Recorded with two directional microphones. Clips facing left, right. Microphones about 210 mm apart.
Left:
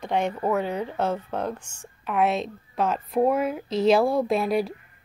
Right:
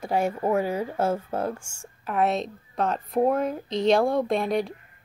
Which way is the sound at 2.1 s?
Centre (ahead or behind).